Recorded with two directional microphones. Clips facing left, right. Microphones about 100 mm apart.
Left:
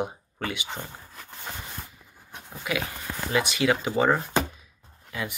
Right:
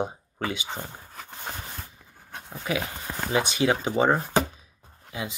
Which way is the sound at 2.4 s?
30° right (ahead or behind).